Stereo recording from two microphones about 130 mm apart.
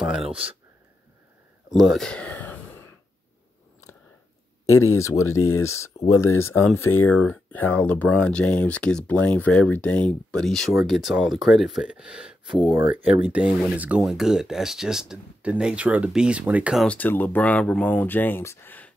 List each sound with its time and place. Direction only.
0.0 s speech: 5° right (ahead or behind)
1.7 s a sound: centre (ahead or behind)
4.9 s speech: 25° left (ahead or behind); by 16.7 s 10° right (ahead or behind)
16.7 s speech: 10° left (ahead or behind)